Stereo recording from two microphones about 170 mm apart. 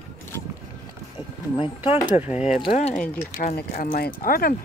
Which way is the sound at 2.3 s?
40° left (ahead or behind).